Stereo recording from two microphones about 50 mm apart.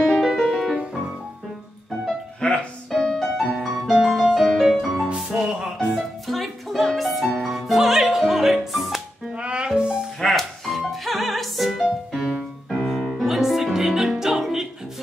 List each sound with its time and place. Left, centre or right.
0.2 s music: centre
2.4 s music: centre
2.9 s music: centre
5.0 s music: centre
6.2 s music: centre
9.4 s music: right
10.2 s music: centre